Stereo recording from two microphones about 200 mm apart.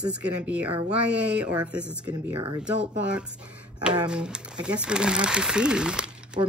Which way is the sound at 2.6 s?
5° right (ahead or behind).